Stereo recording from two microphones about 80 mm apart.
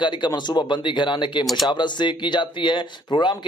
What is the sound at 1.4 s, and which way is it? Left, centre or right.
Speech, centre.